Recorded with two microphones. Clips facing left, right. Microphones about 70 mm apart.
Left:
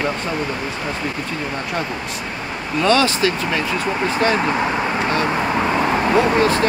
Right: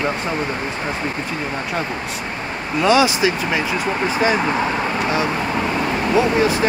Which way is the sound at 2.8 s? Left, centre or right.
Centre.